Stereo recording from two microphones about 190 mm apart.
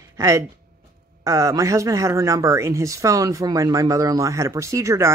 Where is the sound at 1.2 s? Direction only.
15° right (ahead or behind).